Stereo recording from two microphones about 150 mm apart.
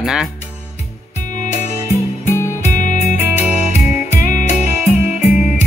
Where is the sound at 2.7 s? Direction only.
55° left (ahead or behind).